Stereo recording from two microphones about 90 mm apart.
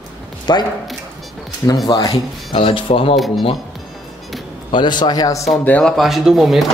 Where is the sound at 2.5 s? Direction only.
85° left.